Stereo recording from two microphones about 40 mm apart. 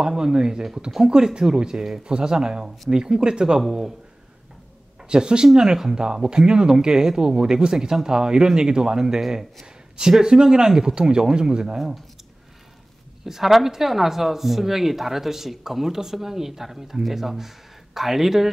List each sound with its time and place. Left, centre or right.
0.0 s speech: centre
5.1 s speech: right
13.2 s speech: centre